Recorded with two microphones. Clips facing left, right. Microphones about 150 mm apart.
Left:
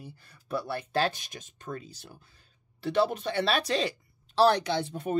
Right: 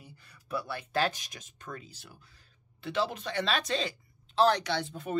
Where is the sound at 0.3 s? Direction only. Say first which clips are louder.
Left 3 dB; 30° left (ahead or behind).